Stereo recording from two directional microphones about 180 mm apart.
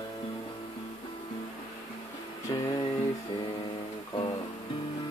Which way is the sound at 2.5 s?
25° left (ahead or behind).